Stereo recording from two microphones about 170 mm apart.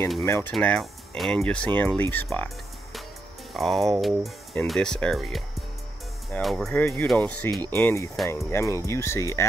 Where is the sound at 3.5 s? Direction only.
Centre (ahead or behind).